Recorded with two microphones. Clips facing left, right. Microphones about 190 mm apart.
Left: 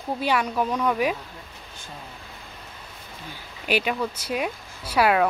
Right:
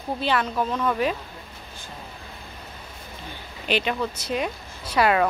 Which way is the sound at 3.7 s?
10° left (ahead or behind).